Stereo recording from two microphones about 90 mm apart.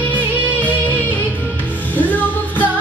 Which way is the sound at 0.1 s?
15° right (ahead or behind).